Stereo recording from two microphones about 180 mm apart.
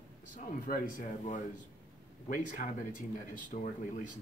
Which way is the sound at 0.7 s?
45° left (ahead or behind).